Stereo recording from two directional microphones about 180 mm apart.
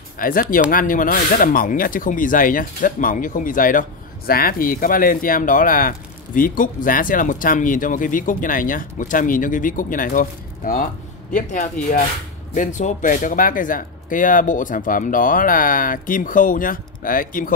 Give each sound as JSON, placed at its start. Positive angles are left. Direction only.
{"t": 0.2, "sound": "speech", "side_deg": 50}